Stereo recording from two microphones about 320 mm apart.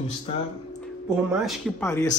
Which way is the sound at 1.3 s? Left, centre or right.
Centre.